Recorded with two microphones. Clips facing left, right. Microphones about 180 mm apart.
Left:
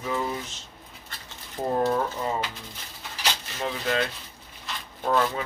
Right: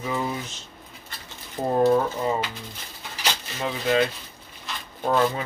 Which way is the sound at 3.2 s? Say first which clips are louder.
Right 1 dB; 5° right (ahead or behind).